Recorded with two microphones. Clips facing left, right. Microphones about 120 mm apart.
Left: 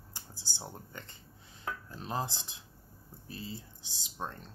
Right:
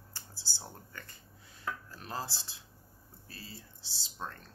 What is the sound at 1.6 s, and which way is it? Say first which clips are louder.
Speech: left 1 dB; 20° left (ahead or behind).